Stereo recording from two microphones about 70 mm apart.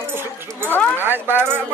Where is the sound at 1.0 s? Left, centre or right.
Right.